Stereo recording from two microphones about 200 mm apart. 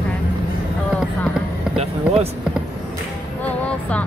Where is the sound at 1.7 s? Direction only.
30° right (ahead or behind).